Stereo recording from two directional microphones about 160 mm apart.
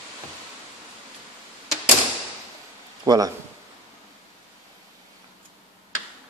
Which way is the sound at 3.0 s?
25° right (ahead or behind).